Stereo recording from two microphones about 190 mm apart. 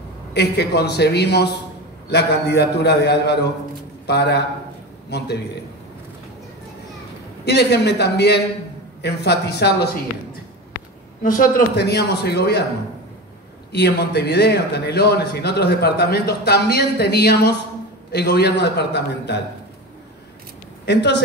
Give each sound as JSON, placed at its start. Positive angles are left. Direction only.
{"t": 0.3, "sound": "a man's voice", "side_deg": 60}
{"t": 7.4, "sound": "a man's voice", "side_deg": 60}
{"t": 11.2, "sound": "a man's voice", "side_deg": 45}
{"t": 13.7, "sound": "a man's voice", "side_deg": 60}
{"t": 20.8, "sound": "a man's voice", "side_deg": 65}